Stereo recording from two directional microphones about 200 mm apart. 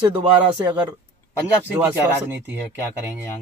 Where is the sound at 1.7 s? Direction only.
10° right (ahead or behind).